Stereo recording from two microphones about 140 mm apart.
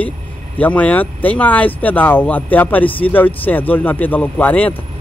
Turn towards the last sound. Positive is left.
turn(degrees=10)  # may be behind; listen again after turning